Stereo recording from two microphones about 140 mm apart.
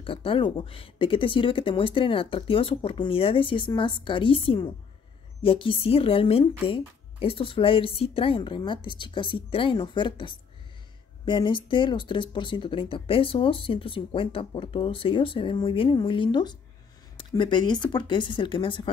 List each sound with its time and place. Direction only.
0.0 s speech: 40° left (ahead or behind)